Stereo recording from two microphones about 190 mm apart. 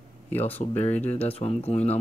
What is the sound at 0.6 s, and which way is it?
Speech, 35° left (ahead or behind).